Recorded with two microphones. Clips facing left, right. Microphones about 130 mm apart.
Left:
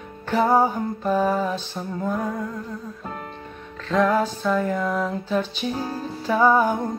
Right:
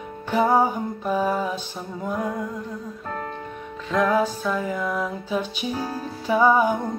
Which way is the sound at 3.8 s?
10° right (ahead or behind).